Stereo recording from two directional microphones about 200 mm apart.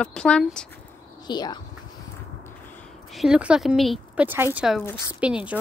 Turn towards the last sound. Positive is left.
turn(degrees=-5)  # may be behind; listen again after turning